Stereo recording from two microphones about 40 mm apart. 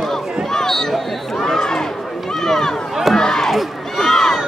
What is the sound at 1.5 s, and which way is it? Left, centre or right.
Crowd, centre.